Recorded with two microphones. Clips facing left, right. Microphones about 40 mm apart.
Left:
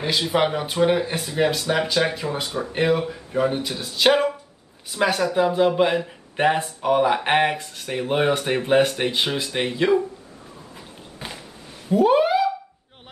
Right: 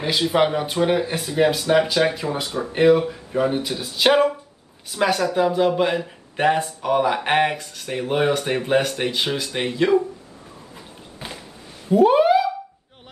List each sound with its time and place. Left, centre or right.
0.0 s speech: centre
8.2 s speech: centre
8.5 s speech: centre
11.1 s a sound: centre